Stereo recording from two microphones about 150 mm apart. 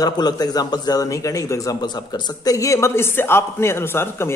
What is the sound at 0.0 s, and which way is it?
A man's voice, 25° left (ahead or behind).